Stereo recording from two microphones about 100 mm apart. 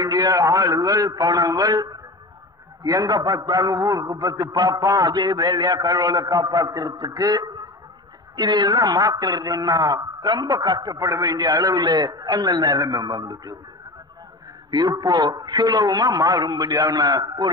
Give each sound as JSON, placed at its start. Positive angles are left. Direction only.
{"t": 0.0, "sound": "a man's voice", "side_deg": -45}
{"t": 14.7, "sound": "a man's voice", "side_deg": -40}